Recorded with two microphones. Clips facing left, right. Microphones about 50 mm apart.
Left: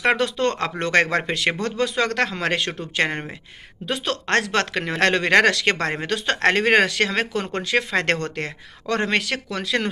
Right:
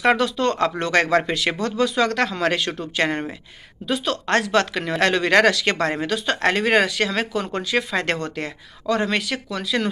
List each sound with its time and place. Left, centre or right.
0.0 s speech: left
3.0 s speech: left
3.8 s speech: left